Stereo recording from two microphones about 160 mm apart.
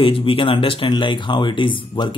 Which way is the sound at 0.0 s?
35° left (ahead or behind).